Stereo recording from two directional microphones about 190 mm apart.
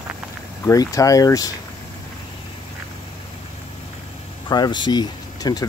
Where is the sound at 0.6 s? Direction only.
15° left (ahead or behind).